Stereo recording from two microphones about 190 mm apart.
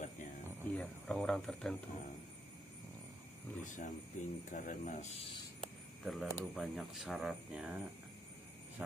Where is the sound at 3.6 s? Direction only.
40° left (ahead or behind).